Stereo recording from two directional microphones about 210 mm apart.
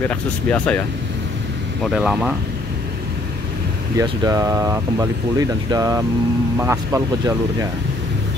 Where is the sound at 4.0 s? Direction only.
15° right (ahead or behind).